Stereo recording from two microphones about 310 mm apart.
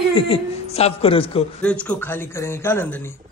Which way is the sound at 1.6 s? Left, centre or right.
Centre.